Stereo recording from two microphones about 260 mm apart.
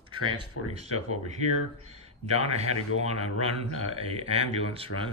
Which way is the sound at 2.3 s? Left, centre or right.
Right.